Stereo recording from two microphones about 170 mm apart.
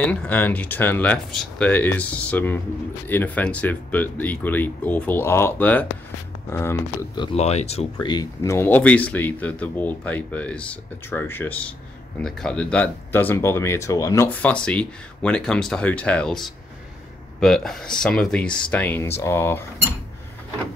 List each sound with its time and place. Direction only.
0.0 s speech: 10° left (ahead or behind)
7.3 s speech: 40° left (ahead or behind)
8.0 s speech: 25° left (ahead or behind)